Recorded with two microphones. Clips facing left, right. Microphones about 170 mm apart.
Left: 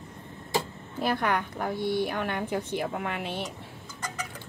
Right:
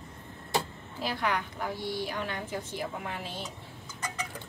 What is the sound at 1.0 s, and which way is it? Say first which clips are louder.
A woman's voice: left 4 dB; 55° left (ahead or behind).